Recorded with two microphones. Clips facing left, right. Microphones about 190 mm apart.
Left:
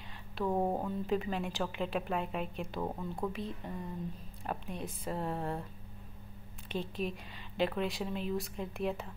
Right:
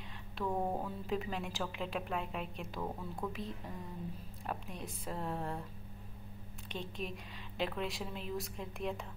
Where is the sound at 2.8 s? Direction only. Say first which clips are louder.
Left 3 dB; 20° left (ahead or behind).